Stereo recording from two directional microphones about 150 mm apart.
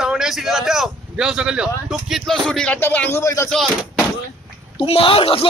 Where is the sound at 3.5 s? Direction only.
Centre (ahead or behind).